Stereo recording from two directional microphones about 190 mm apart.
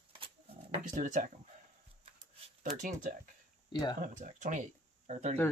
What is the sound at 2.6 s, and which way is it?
Speech, 45° right (ahead or behind).